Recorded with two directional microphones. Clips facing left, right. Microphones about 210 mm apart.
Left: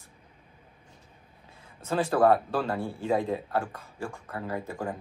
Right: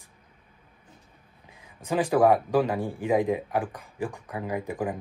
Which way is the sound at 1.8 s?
15° right (ahead or behind).